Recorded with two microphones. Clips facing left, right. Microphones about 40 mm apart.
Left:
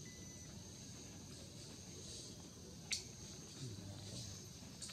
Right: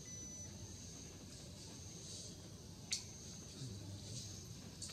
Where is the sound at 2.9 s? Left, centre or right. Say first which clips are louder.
Left 1 dB; centre.